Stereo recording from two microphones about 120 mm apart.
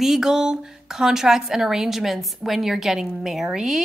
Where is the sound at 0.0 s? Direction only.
5° right (ahead or behind).